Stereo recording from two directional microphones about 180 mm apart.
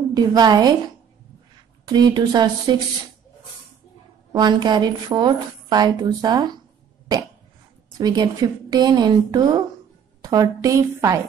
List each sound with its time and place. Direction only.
0.1 s a woman's voice: 20° right (ahead or behind)
1.9 s a woman's voice: 25° right (ahead or behind)
4.3 s a woman's voice: 25° right (ahead or behind)
8.0 s a woman's voice: 20° right (ahead or behind)